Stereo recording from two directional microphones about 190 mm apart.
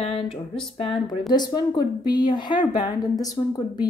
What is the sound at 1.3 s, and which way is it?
A woman's voice, 20° left (ahead or behind).